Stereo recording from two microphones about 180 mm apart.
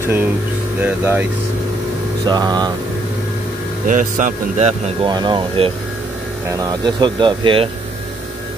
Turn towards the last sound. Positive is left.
turn(degrees=-30)  # may be behind; listen again after turning